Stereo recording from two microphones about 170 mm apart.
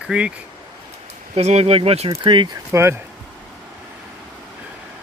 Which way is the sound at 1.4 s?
40° right (ahead or behind).